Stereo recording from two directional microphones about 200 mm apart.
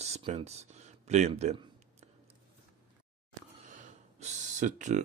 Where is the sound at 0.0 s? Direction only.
35° right (ahead or behind).